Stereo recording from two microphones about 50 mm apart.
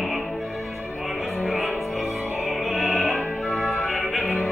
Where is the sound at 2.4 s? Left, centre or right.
Centre.